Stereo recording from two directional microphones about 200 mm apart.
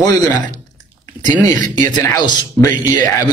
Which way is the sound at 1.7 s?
40° right (ahead or behind).